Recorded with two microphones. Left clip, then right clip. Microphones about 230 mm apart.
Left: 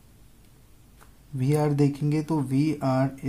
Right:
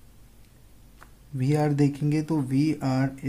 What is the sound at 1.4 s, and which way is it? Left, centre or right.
Speech, centre.